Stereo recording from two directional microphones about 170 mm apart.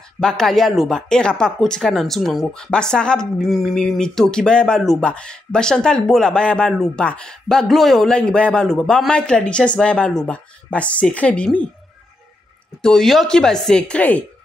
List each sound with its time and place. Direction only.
0.2 s speech: 5° left (ahead or behind)
12.8 s speech: centre (ahead or behind)